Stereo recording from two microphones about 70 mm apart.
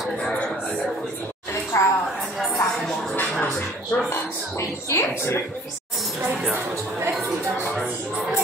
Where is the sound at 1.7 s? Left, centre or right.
Left.